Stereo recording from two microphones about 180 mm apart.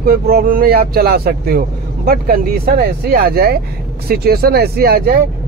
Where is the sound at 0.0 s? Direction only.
55° right (ahead or behind).